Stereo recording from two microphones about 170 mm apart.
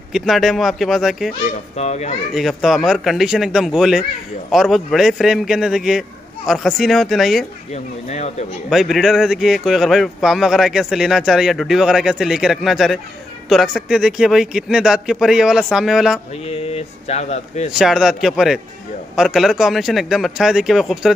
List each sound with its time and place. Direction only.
0.1 s speech: centre (ahead or behind)
1.8 s speech: 40° left (ahead or behind)
2.3 s speech: centre (ahead or behind)
7.7 s speech: 40° left (ahead or behind)
8.6 s speech: centre (ahead or behind)
16.4 s speech: 35° left (ahead or behind)
17.7 s speech: 5° right (ahead or behind)